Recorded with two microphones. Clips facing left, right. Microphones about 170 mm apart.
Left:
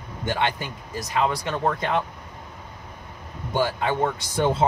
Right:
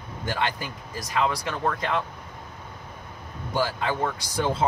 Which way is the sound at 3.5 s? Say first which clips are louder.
Left 2 dB; 20° left (ahead or behind).